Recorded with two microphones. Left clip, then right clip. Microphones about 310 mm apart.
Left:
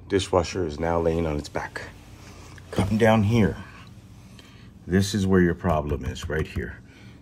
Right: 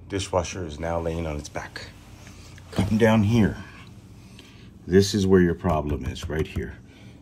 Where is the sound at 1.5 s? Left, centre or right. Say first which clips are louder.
Left 3 dB; left.